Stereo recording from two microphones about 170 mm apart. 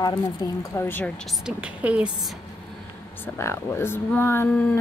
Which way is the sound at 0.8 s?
10° left (ahead or behind).